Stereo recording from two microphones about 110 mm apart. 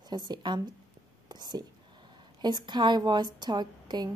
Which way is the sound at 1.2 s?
40° right (ahead or behind).